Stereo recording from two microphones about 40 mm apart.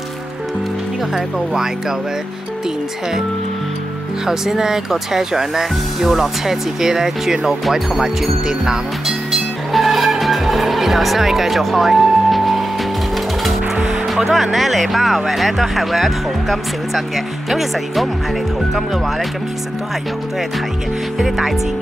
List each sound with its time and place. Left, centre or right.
1.1 s speech: centre
4.3 s speech: centre
9.7 s music: centre
14.0 s speech: centre
21.2 s speech: centre